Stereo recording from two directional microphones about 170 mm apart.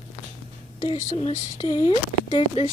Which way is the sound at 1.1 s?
40° left (ahead or behind).